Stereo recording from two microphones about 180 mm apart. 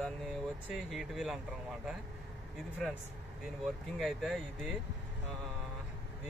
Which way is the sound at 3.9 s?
Centre (ahead or behind).